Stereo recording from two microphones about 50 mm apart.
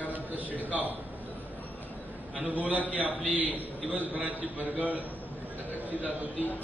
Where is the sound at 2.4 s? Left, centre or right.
Right.